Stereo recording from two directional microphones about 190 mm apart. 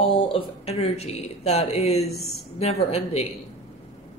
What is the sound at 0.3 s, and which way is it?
Speech, 35° left (ahead or behind).